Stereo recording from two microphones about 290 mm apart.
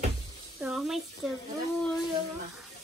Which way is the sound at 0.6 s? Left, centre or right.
Centre.